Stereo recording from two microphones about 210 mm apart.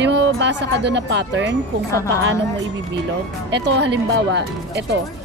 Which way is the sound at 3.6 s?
55° right (ahead or behind).